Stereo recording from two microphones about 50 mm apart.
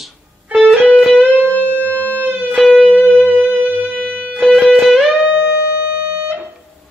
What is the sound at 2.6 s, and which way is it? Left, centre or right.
Music, left.